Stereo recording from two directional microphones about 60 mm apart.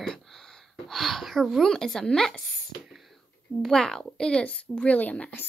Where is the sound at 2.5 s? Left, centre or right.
Centre.